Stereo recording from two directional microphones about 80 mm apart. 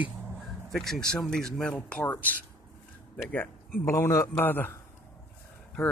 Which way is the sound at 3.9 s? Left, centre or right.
Left.